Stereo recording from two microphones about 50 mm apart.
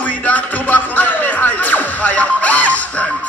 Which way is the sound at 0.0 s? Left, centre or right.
Left.